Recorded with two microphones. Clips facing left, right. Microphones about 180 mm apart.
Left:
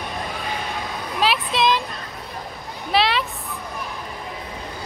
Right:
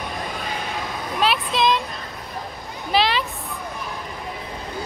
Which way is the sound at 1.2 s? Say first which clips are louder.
Even; centre (ahead or behind).